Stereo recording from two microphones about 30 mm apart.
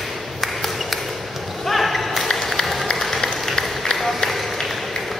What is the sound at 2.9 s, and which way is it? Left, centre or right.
Run, centre.